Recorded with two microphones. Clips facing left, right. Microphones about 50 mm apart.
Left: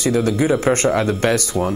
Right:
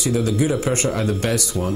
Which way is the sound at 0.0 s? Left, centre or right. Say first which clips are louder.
Left 3 dB; left.